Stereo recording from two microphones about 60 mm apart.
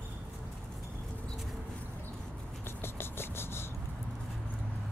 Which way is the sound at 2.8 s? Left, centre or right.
Left.